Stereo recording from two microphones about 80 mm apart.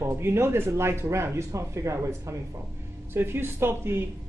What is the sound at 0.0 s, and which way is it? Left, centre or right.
Speech, right.